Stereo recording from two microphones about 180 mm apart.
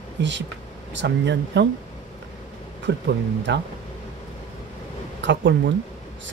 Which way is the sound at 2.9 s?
75° right (ahead or behind).